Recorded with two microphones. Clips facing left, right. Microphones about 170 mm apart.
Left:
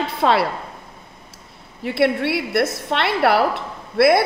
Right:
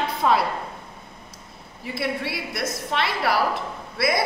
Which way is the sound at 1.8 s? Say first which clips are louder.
Left 9 dB; 65° left (ahead or behind).